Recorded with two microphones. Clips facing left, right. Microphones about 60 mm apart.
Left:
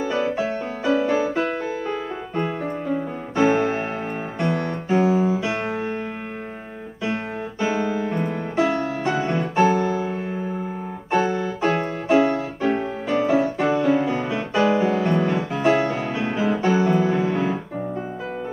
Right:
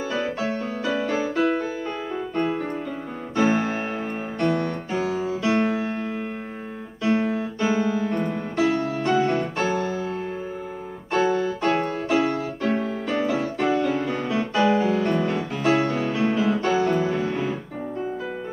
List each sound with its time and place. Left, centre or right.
0.0 s music: centre
4.4 s piano: centre
5.4 s music: centre
7.1 s music: centre
9.8 s music: left
12.1 s music: left
12.4 s music: centre